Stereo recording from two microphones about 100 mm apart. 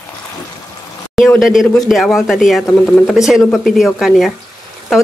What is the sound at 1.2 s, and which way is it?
Speech, centre (ahead or behind).